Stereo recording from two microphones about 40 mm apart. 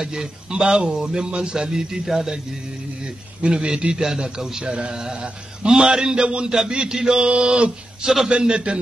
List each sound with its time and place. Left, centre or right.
0.0 s a man's voice: centre
3.0 s a man's voice: right
4.4 s a man's voice: centre
7.2 s a man's voice: right